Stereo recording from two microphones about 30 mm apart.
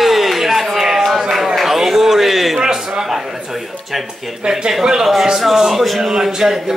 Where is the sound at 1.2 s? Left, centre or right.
Centre.